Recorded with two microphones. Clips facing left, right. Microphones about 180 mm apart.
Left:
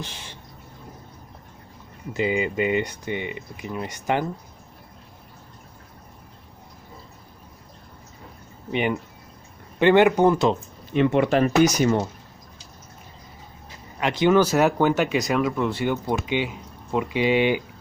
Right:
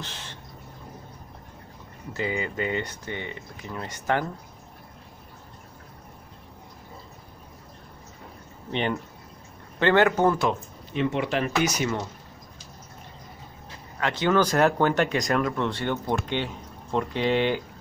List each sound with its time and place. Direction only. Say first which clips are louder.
0.0 s bird: left 2 dB; 10° left (ahead or behind)
2.1 s speech: left 6 dB; 15° left (ahead or behind)
9.8 s speech: left 4 dB; 15° left (ahead or behind)
11.0 s speech: left 7 dB; 45° left (ahead or behind)
13.9 s speech: left 4 dB; 15° left (ahead or behind)